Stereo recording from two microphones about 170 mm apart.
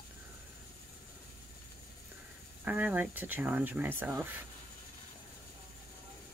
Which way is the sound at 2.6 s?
10° right (ahead or behind).